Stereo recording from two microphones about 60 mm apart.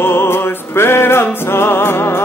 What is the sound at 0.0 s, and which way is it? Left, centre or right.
Music, left.